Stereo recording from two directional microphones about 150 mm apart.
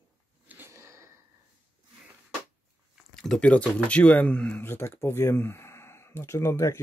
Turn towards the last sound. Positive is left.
turn(degrees=20)  # may be behind; listen again after turning